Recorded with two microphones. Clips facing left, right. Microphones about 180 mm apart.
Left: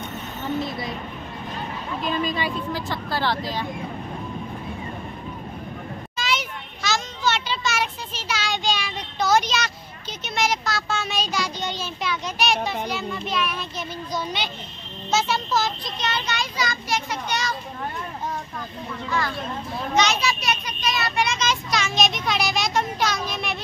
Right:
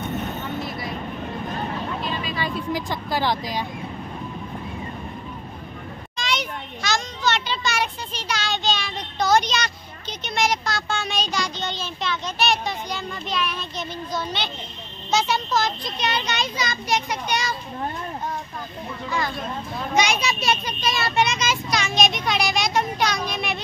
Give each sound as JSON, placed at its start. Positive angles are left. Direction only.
{"t": 2.7, "sound": "speech", "side_deg": -15}
{"t": 6.1, "sound": "children playing", "side_deg": 5}
{"t": 10.2, "sound": "a sound", "side_deg": 5}
{"t": 16.0, "sound": "children playing", "side_deg": -15}
{"t": 19.0, "sound": "vehicle", "side_deg": -20}
{"t": 19.9, "sound": "children playing", "side_deg": -10}
{"t": 21.4, "sound": "a sound", "side_deg": -5}